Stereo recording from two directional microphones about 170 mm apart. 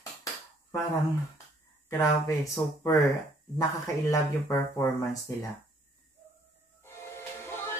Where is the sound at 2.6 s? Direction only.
15° left (ahead or behind).